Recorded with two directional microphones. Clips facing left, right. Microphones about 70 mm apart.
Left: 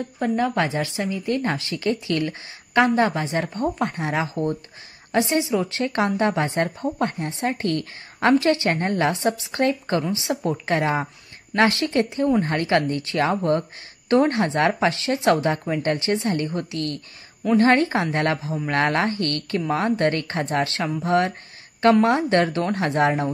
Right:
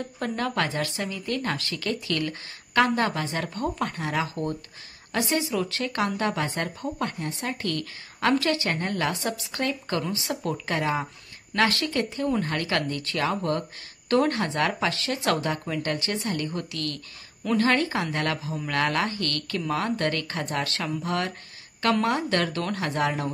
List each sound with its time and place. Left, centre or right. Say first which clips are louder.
0.2 s speech: left 6 dB; centre
10.6 s speech: left 5 dB; left